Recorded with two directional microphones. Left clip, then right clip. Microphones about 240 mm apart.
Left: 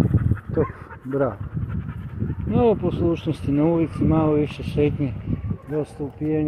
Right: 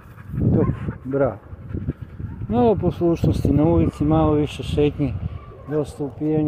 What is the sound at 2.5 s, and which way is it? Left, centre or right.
Speech, right.